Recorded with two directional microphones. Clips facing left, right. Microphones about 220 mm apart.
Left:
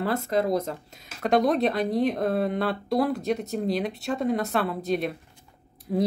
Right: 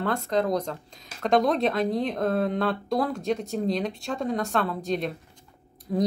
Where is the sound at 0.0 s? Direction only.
5° left (ahead or behind).